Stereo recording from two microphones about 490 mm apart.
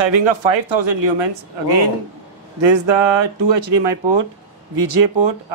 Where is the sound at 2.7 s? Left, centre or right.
Right.